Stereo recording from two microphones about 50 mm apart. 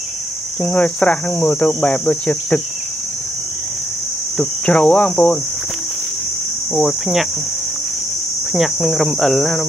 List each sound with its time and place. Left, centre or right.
0.7 s cricket: left
4.4 s cricket: centre
6.7 s speech: centre
8.5 s speech: centre